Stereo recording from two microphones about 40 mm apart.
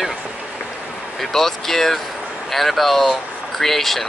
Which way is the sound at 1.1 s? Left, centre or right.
Centre.